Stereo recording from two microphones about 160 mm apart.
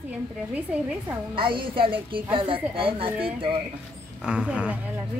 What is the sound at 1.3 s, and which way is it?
Speech, 30° right (ahead or behind).